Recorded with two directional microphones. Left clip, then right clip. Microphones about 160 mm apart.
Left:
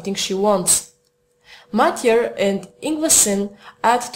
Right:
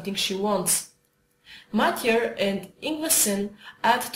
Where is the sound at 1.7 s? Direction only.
45° left (ahead or behind).